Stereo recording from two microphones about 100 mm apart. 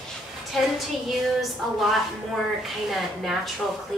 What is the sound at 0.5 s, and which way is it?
Speech, centre (ahead or behind).